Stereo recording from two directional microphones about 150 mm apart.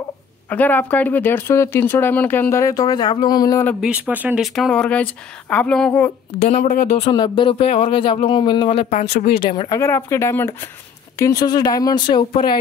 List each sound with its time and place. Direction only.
0.5 s speech: 10° left (ahead or behind)
3.8 s speech: 10° right (ahead or behind)
4.6 s speech: 5° left (ahead or behind)
6.4 s speech: 60° left (ahead or behind)
7.0 s speech: 30° left (ahead or behind)
9.7 s speech: 15° left (ahead or behind)